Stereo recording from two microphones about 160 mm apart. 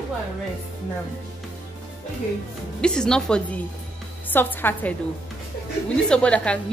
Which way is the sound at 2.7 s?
5° left (ahead or behind).